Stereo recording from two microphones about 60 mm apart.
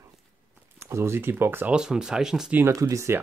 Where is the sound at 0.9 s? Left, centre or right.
Right.